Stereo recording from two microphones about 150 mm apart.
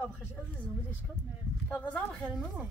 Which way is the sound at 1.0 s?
5° right (ahead or behind).